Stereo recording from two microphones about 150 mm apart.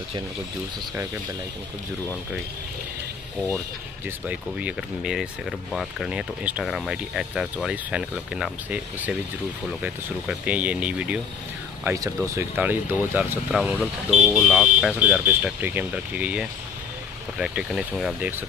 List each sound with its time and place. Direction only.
4.3 s speech: 10° right (ahead or behind)
11.8 s speech: 20° right (ahead or behind); by 18.3 s 5° right (ahead or behind)